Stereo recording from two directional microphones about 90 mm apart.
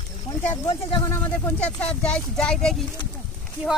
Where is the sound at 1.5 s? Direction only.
10° left (ahead or behind).